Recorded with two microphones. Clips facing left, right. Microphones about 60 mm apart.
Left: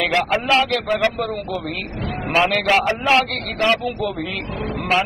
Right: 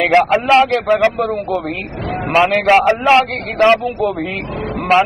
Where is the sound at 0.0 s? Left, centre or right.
Right.